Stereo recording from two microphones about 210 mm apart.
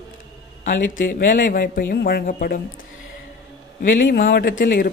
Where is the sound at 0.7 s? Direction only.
40° left (ahead or behind).